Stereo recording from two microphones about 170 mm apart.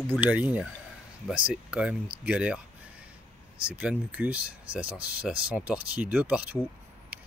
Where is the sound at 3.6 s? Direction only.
5° right (ahead or behind).